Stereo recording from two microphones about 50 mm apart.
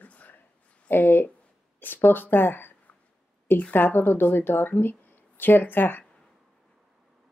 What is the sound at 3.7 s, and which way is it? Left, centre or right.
Speech, left.